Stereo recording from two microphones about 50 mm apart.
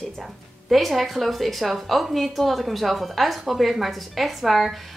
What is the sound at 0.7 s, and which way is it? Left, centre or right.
A woman's voice, centre.